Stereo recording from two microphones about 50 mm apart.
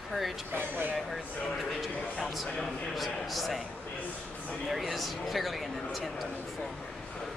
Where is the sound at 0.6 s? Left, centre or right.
Right.